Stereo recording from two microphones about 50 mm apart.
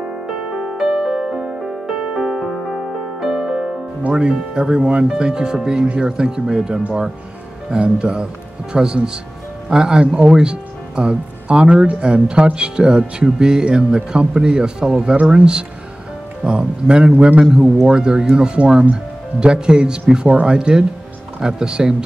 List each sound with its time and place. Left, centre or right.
0.3 s music: centre
4.1 s a man's voice: centre
16.4 s a man's voice: right
20.2 s speech: right
20.5 s a man's voice: centre